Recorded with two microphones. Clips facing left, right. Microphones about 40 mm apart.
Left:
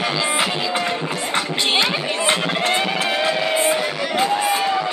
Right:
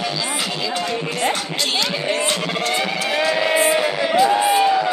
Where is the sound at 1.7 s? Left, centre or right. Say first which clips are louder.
Even; left.